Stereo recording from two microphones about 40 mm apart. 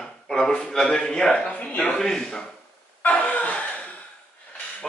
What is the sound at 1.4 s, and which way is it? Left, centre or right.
Speech, left.